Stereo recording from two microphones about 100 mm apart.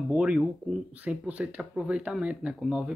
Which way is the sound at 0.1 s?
10° right (ahead or behind).